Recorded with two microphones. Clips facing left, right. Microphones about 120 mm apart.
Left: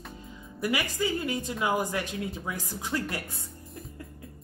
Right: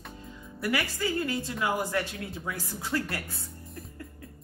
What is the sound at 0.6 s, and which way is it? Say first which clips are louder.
A woman's voice: left 1 dB; 15° left (ahead or behind).